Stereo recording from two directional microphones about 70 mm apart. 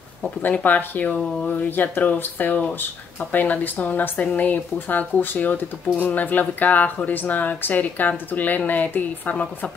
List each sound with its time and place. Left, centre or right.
0.7 s speech: left